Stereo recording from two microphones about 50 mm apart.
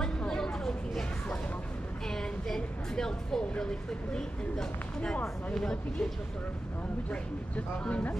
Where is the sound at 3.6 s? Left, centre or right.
Centre.